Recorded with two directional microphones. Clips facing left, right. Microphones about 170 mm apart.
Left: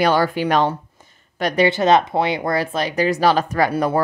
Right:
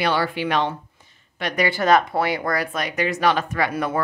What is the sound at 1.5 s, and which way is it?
Speech, 20° left (ahead or behind).